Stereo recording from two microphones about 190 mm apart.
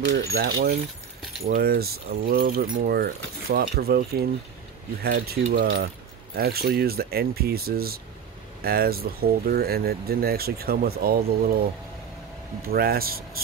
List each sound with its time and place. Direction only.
0.1 s speech: 60° right (ahead or behind)
12.6 s speech: 50° right (ahead or behind)